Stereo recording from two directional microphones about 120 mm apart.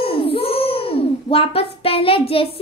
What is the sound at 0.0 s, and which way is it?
A child's voice, 50° left (ahead or behind).